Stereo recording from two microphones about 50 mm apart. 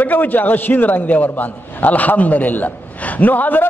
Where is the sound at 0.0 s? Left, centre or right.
Left.